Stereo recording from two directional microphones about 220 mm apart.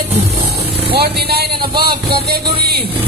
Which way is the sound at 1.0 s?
45° right (ahead or behind).